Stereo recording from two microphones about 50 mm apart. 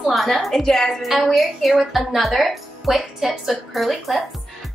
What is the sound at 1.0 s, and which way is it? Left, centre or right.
A woman's voice, centre.